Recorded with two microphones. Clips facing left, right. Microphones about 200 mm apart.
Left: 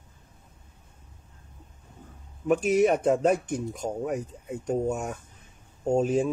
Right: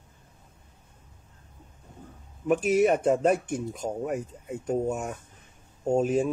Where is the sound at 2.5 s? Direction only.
Centre (ahead or behind).